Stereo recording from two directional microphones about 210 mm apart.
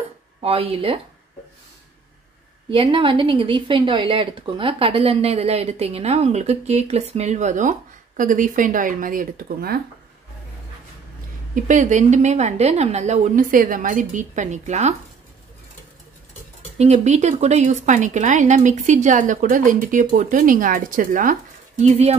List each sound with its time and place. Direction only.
0.4 s a woman's voice: 30° right (ahead or behind)
2.7 s a woman's voice: 25° right (ahead or behind); by 9.8 s 45° right (ahead or behind)
11.5 s speech: 35° right (ahead or behind)
16.7 s speech: 30° right (ahead or behind)